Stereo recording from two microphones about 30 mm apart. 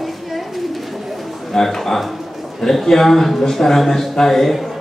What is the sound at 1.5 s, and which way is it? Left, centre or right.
A man's voice, centre.